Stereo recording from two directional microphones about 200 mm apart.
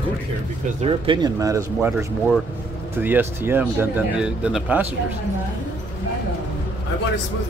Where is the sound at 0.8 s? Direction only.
25° right (ahead or behind); by 4.8 s 5° right (ahead or behind).